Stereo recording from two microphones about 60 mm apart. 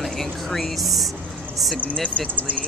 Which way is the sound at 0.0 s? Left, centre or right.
Centre.